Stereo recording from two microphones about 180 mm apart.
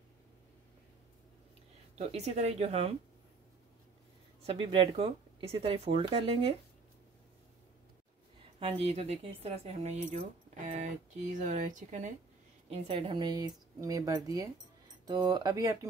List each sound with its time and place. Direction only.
2.0 s speech: 35° right (ahead or behind)
4.5 s speech: 30° right (ahead or behind)
8.5 s speech: 30° right (ahead or behind)
11.4 s speech: 45° right (ahead or behind)
12.6 s a woman's voice: 35° right (ahead or behind); by 15.9 s 15° right (ahead or behind)